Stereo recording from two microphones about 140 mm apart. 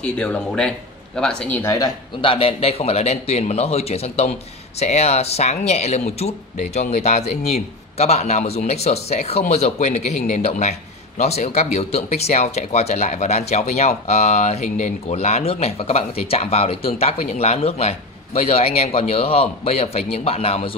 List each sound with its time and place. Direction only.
0.0 s speech: 5° left (ahead or behind)
2.2 s a man's voice: 40° left (ahead or behind)